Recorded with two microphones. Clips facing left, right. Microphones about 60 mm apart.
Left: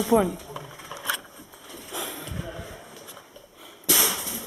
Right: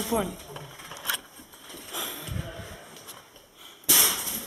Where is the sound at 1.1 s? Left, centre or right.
Centre.